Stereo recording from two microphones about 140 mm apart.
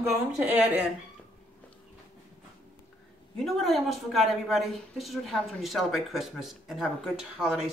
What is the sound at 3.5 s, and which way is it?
Speech, centre (ahead or behind).